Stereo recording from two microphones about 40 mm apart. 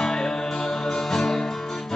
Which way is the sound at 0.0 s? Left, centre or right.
Centre.